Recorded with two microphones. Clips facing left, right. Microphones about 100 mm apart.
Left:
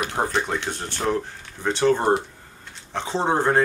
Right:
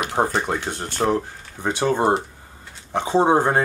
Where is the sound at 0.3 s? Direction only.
5° right (ahead or behind).